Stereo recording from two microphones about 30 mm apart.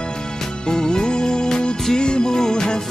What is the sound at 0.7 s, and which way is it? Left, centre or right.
Music, left.